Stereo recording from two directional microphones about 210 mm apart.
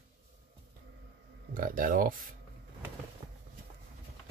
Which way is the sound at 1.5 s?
40° right (ahead or behind).